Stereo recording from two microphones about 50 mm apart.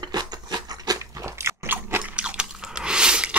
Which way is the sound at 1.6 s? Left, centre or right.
Right.